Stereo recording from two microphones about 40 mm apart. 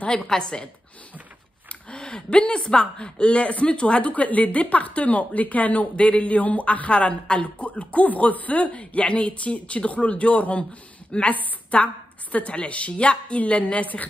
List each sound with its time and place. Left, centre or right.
0.3 s speech: centre
1.9 s speech: left
4.1 s a woman's voice: left